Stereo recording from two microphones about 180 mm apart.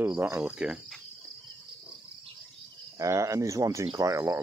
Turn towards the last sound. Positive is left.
turn(degrees=-15)  # may be behind; listen again after turning